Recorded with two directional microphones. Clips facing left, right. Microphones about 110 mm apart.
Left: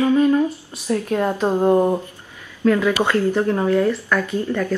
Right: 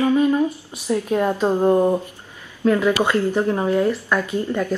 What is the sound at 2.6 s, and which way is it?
Speech, 15° right (ahead or behind).